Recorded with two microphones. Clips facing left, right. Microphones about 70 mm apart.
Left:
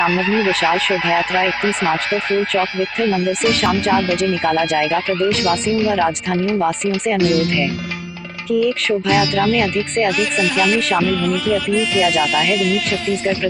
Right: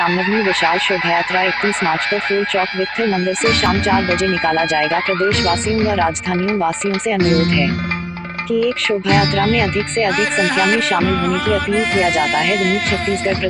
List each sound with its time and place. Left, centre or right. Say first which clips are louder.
0.1 s music: even; right
1.6 s music: right 1 dB; right
7.2 s speech: right 1 dB; right
8.5 s speech: even; centre
9.1 s music: right 1 dB; right